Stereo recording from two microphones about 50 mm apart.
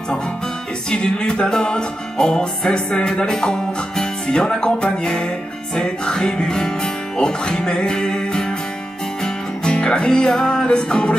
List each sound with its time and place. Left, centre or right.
0.8 s music: centre